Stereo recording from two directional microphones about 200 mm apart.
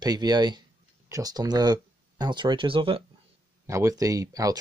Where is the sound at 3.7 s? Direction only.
15° right (ahead or behind).